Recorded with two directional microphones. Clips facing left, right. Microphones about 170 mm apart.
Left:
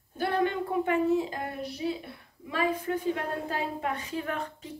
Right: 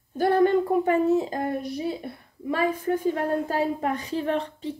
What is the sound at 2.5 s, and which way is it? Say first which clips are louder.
A woman's voice: right 4 dB; 45° right (ahead or behind).